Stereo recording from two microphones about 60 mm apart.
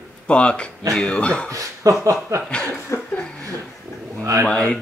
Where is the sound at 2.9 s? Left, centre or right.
Left.